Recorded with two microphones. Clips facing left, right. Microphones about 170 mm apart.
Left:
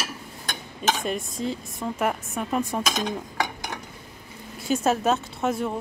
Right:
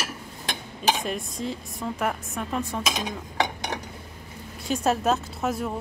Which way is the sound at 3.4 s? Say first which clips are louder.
Right 5 dB; 25° right (ahead or behind).